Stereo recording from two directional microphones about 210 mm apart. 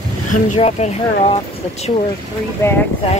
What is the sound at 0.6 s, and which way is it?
Speech, 30° left (ahead or behind).